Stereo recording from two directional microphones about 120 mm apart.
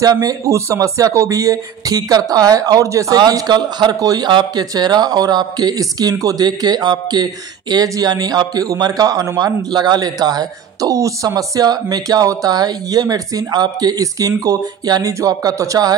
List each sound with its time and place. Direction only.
0.0 s speech: 30° right (ahead or behind)